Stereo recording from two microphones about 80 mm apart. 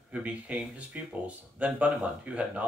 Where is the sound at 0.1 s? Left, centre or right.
Centre.